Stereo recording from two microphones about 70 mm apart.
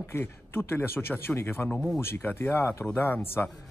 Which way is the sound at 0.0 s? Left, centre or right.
Left.